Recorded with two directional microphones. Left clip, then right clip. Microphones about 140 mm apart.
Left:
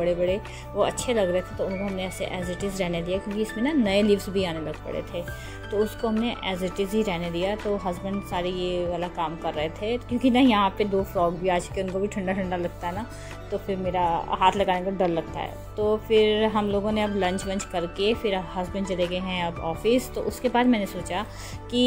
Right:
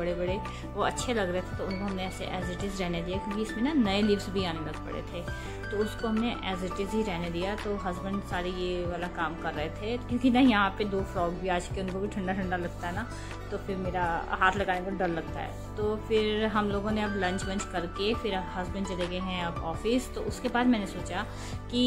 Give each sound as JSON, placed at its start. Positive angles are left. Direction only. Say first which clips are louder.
{"t": 0.0, "sound": "speech", "louder": "left 7 dB", "side_deg": 20}
{"t": 6.2, "sound": "speech", "louder": "left 4 dB", "side_deg": 20}